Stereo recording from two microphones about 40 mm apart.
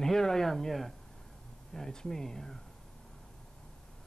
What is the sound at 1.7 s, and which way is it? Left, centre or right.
Speech, centre.